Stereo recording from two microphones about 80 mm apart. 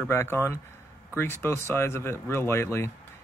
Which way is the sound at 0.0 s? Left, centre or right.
Left.